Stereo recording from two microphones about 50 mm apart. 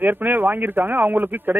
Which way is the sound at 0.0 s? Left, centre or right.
Right.